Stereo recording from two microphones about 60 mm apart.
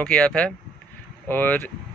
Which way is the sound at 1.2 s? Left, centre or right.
Left.